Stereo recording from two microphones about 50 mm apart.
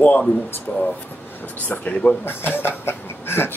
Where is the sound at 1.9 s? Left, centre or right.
Left.